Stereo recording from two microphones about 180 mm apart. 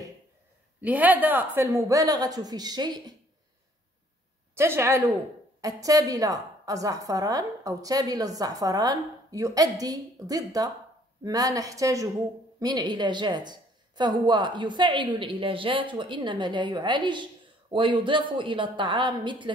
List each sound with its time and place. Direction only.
0.7 s a woman's voice: 10° right (ahead or behind)
4.6 s a woman's voice: 15° right (ahead or behind)